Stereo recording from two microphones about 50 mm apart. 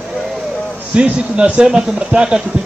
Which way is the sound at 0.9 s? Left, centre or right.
Right.